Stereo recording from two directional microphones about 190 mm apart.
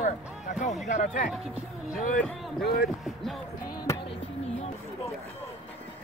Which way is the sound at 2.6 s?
55° left (ahead or behind).